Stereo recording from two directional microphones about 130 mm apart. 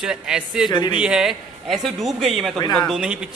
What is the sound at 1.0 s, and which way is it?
A man's voice, 5° right (ahead or behind).